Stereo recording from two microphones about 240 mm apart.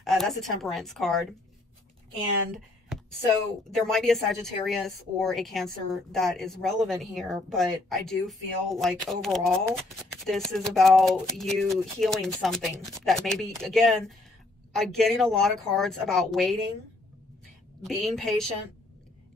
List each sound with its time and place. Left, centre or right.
0.0 s a woman's voice: centre
2.5 s a sound: centre
3.7 s a woman's voice: centre
17.8 s a woman's voice: centre